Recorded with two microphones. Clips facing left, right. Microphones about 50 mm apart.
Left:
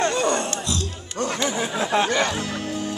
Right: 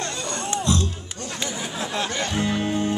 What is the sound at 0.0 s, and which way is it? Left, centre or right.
Music, left.